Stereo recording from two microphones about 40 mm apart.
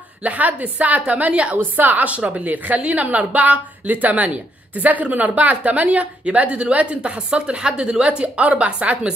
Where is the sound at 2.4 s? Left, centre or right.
Right.